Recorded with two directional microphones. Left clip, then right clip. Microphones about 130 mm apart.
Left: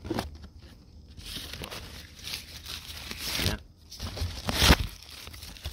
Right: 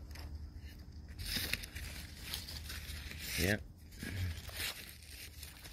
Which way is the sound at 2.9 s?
90° left.